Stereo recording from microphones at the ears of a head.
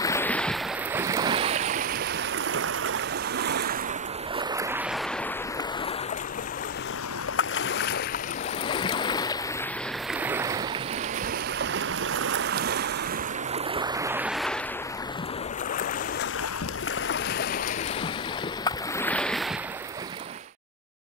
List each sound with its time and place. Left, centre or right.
1.0 s boat: right
2.5 s stream: right
7.3 s boat: left
11.7 s boat: right